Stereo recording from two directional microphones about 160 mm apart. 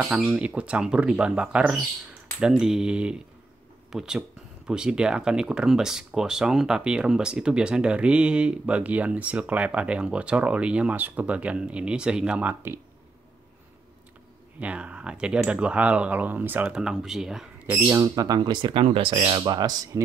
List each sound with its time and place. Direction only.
0.0 s speech: 5° right (ahead or behind)
14.6 s speech: 10° right (ahead or behind)
17.6 s speech: 15° right (ahead or behind)